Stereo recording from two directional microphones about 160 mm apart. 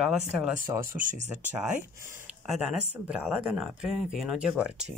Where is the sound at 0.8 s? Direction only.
55° right (ahead or behind).